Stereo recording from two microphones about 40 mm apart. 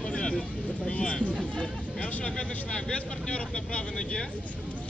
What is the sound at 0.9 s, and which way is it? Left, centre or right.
Speech, left.